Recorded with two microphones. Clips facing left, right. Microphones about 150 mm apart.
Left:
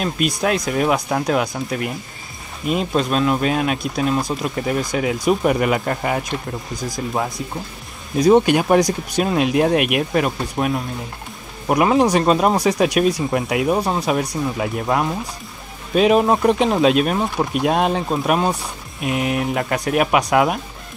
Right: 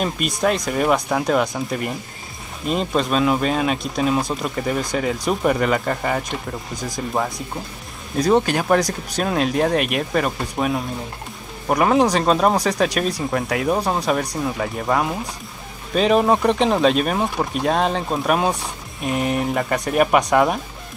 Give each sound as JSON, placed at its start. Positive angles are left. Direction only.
{"t": 0.0, "sound": "speech", "side_deg": 5}
{"t": 8.2, "sound": "speech", "side_deg": 15}